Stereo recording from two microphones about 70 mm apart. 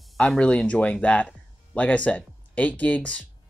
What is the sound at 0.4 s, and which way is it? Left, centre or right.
Speech, centre.